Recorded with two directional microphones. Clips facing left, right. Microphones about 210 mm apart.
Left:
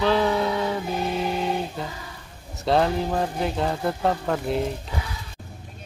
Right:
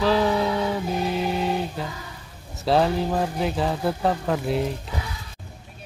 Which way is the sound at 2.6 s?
Centre (ahead or behind).